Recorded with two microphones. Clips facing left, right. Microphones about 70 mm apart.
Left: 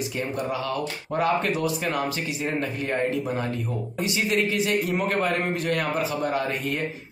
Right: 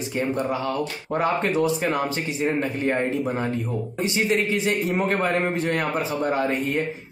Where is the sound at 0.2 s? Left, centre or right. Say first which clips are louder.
Right 5 dB; right.